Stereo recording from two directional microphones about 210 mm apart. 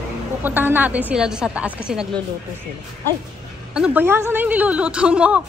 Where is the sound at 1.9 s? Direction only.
5° right (ahead or behind).